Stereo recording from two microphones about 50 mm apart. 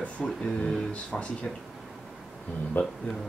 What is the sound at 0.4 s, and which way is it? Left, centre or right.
Speech, centre.